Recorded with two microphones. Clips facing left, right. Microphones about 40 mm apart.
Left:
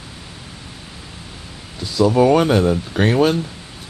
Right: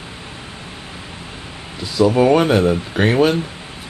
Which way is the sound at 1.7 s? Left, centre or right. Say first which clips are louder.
Even; centre.